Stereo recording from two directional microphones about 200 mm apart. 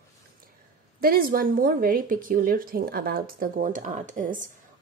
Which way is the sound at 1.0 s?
45° right (ahead or behind).